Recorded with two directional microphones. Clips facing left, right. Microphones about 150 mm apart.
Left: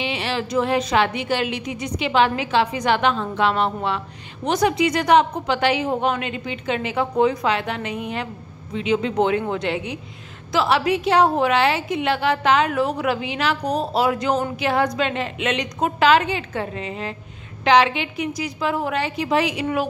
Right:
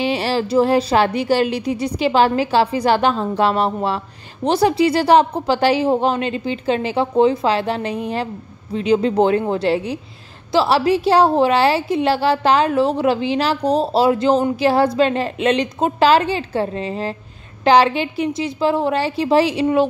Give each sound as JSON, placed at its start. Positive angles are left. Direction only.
{"t": 0.0, "sound": "a woman's voice", "side_deg": -40}